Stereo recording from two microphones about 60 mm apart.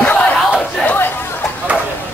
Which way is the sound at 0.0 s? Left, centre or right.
Left.